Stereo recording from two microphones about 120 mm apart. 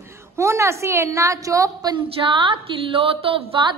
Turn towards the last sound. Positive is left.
turn(degrees=-50)  # may be behind; listen again after turning